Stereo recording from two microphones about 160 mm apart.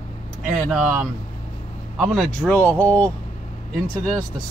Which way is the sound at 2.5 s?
10° left (ahead or behind).